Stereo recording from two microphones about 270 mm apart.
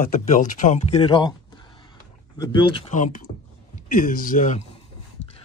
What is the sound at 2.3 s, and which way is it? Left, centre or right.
Speech, centre.